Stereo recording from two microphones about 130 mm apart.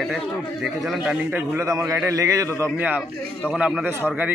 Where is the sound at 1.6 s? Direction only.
25° right (ahead or behind).